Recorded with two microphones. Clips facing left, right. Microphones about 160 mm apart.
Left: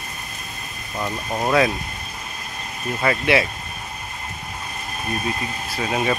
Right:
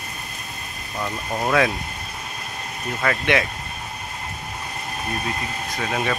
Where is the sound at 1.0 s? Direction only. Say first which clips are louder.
Left 1 dB; 5° left (ahead or behind).